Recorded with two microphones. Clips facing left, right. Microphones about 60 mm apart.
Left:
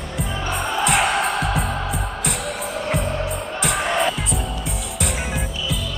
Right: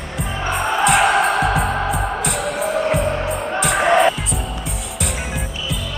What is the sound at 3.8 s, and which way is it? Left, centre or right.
Music, right.